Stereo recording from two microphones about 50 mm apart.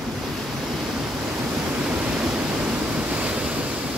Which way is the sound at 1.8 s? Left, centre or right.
Right.